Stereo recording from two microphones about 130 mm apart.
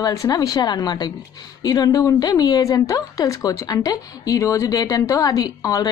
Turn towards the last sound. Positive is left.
turn(degrees=25)  # may be behind; listen again after turning